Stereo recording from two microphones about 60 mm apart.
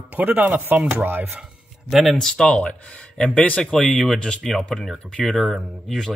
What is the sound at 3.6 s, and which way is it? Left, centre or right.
Speech, centre.